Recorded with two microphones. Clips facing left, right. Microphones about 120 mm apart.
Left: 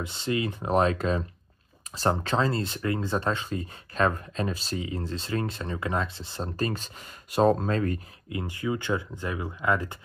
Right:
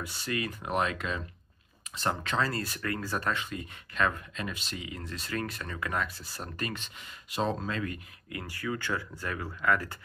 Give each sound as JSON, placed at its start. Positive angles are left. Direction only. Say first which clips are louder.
{"t": 0.0, "sound": "speech", "louder": "left 5 dB", "side_deg": 25}
{"t": 8.3, "sound": "speech", "louder": "left 5 dB", "side_deg": 20}